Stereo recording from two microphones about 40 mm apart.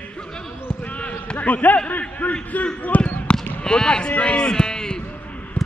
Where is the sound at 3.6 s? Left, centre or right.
Left.